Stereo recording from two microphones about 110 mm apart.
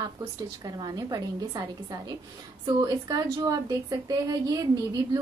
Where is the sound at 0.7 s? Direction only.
35° right (ahead or behind).